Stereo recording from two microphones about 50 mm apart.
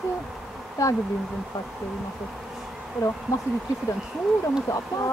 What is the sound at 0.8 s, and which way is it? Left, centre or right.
Speech, left.